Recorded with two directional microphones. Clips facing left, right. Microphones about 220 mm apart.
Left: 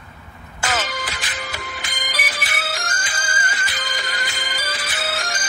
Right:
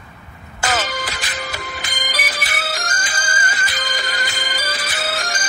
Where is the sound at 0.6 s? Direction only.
40° right (ahead or behind).